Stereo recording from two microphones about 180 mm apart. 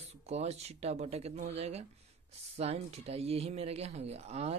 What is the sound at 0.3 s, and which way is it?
Speech, 35° right (ahead or behind).